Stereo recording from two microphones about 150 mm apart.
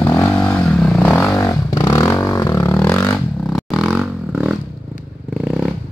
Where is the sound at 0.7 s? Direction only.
5° left (ahead or behind).